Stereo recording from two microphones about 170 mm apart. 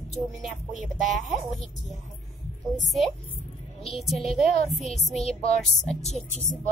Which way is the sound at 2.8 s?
Centre (ahead or behind).